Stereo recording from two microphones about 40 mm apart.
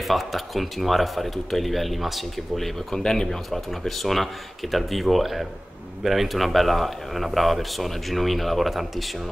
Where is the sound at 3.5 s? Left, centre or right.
Centre.